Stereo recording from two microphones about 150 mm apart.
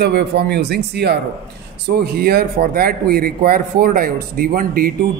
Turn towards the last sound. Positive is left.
turn(degrees=-70)  # may be behind; listen again after turning